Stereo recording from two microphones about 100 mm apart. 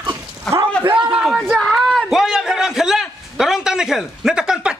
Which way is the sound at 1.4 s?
5° left (ahead or behind).